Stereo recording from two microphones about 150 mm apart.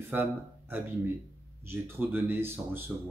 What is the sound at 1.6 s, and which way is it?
Speech, 15° right (ahead or behind).